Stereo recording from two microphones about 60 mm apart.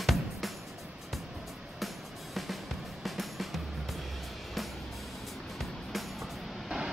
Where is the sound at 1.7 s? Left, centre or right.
Centre.